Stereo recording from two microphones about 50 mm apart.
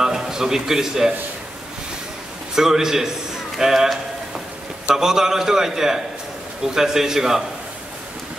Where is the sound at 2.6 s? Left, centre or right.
Centre.